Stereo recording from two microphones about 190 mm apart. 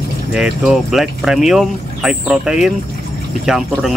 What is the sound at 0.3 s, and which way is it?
Speech, 5° right (ahead or behind).